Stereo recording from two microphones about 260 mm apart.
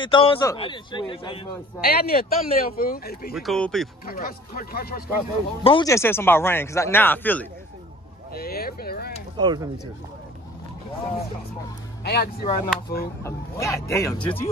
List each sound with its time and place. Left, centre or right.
0.0 s a man's voice: centre
1.8 s speech: left
3.3 s speech: centre
4.0 s speech: left
5.6 s a man's voice: centre
8.4 s speech: left
9.4 s speech: centre
12.0 s speech: left
13.2 s a man's voice: centre